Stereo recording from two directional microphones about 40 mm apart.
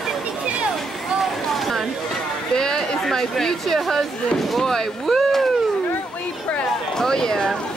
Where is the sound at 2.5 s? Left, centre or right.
Centre.